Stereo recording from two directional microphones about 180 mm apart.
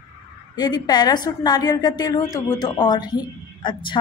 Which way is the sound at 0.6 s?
20° left (ahead or behind).